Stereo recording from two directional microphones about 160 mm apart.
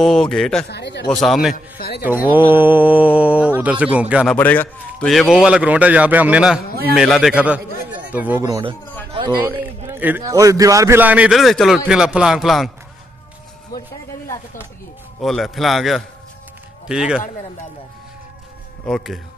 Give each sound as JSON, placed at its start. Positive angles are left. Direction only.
{"t": 0.0, "sound": "a man's voice", "side_deg": 0}
{"t": 0.7, "sound": "a man's voice", "side_deg": 90}
{"t": 1.1, "sound": "a man's voice", "side_deg": 0}
{"t": 1.5, "sound": "a man's voice", "side_deg": 70}
{"t": 2.0, "sound": "a man's voice", "side_deg": -10}
{"t": 4.4, "sound": "a man's voice", "side_deg": 10}
{"t": 5.1, "sound": "a man's voice", "side_deg": -5}
{"t": 9.5, "sound": "a man's voice", "side_deg": -10}
{"t": 15.1, "sound": "a man's voice", "side_deg": 0}
{"t": 18.9, "sound": "a man's voice", "side_deg": 0}